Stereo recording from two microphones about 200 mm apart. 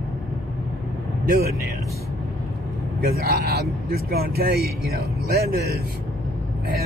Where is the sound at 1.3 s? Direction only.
50° right (ahead or behind).